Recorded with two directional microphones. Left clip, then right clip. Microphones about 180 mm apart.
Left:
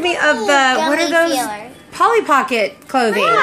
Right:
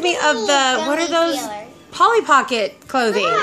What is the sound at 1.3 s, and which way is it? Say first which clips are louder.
Speech: left 5 dB; 35° left (ahead or behind).